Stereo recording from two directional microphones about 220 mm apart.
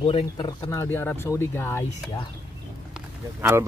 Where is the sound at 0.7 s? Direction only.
10° left (ahead or behind).